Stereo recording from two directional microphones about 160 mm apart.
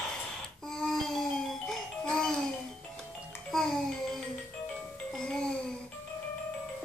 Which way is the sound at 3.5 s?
Centre (ahead or behind).